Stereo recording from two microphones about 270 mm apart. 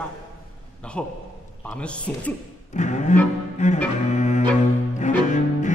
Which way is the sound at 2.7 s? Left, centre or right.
Left.